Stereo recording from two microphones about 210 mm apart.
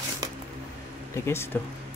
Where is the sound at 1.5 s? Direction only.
10° left (ahead or behind).